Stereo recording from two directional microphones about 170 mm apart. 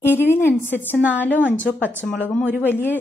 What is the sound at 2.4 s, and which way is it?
Speech, 10° right (ahead or behind).